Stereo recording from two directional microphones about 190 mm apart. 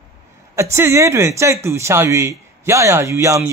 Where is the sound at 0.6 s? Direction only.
15° right (ahead or behind).